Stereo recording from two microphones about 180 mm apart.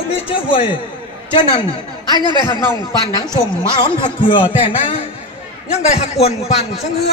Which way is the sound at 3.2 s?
25° left (ahead or behind).